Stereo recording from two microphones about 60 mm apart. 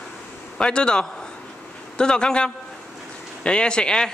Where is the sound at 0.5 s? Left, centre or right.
Centre.